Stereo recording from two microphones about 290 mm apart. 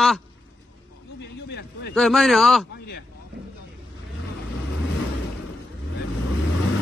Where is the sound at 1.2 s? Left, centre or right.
Left.